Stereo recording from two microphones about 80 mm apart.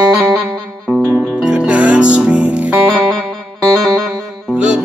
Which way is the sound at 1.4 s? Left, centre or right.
Centre.